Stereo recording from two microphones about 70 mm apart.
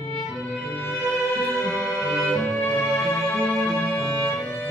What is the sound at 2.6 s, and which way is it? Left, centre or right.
Music, left.